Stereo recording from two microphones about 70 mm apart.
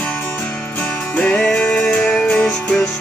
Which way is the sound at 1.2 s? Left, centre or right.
Centre.